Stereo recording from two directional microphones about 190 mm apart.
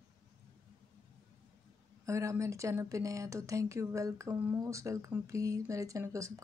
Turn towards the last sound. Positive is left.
turn(degrees=-15)  # may be behind; listen again after turning